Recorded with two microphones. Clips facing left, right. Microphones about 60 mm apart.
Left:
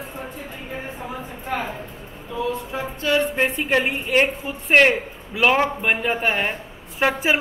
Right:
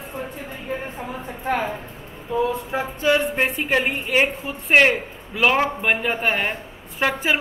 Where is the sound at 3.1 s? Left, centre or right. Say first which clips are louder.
Left 4 dB; centre.